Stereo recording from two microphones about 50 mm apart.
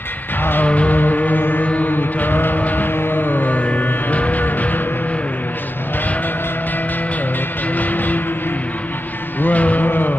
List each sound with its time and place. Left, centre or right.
0.4 s music: left
0.7 s music: left
1.7 s a sound: left
7.7 s vehicle: left
9.4 s music: left